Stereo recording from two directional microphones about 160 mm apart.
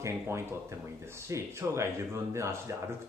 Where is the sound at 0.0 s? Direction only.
15° right (ahead or behind).